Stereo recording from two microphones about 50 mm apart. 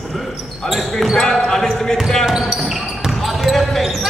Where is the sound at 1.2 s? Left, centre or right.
Centre.